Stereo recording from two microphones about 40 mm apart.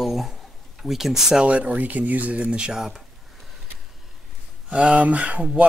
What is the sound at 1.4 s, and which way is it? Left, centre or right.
Speech, right.